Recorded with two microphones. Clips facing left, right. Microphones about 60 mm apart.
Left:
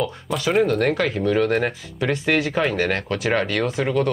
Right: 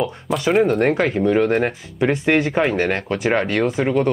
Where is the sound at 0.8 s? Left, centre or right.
Right.